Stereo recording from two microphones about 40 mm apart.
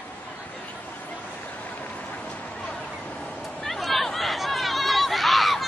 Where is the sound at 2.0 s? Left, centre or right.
Left.